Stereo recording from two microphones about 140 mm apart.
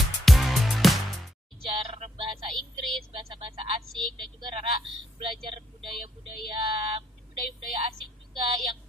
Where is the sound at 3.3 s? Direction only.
40° right (ahead or behind).